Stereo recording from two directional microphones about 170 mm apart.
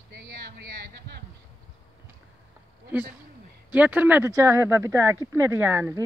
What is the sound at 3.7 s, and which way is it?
Speech, 10° right (ahead or behind).